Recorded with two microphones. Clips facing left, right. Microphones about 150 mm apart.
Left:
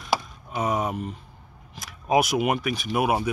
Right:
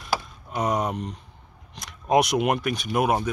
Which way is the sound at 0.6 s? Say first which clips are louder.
Right 1 dB; 5° left (ahead or behind).